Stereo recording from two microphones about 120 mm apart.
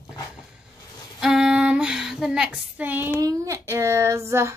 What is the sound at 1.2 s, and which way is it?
Female singing, 5° right (ahead or behind).